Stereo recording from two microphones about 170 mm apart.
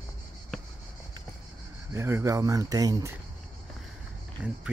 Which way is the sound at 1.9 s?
15° right (ahead or behind).